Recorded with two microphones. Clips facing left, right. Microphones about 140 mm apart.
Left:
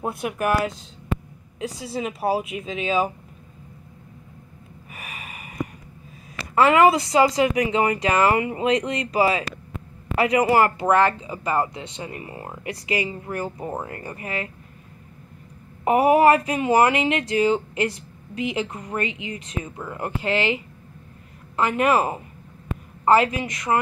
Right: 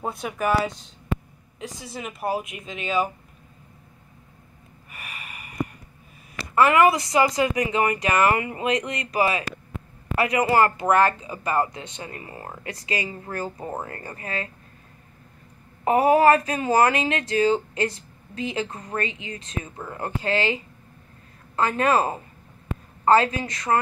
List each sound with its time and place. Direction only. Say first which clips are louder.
0.0 s speech: left 2 dB; 5° left (ahead or behind)
1.9 s speech: left 4 dB; 30° left (ahead or behind)
6.5 s speech: left 2 dB; 25° left (ahead or behind)
15.8 s speech: left 1 dB; 20° left (ahead or behind)